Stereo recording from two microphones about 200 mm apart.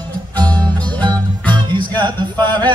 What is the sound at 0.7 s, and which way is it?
Music, 5° left (ahead or behind).